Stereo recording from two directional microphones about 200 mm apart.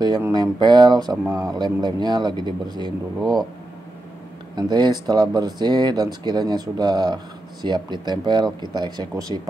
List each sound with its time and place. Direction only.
0.0 s speech: 20° right (ahead or behind)
4.6 s speech: 20° right (ahead or behind)